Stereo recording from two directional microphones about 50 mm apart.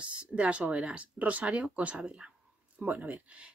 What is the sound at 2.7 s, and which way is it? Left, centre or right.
Speech, right.